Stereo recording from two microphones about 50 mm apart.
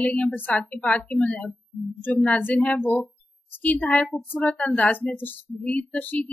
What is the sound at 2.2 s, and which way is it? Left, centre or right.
A woman's voice, left.